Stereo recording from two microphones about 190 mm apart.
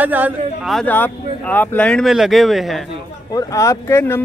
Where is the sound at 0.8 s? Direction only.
10° left (ahead or behind).